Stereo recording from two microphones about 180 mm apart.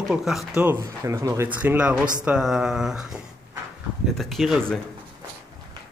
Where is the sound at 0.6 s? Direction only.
15° right (ahead or behind); by 4.7 s centre (ahead or behind).